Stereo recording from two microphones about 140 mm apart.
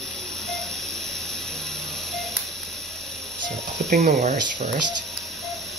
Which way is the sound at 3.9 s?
65° right (ahead or behind).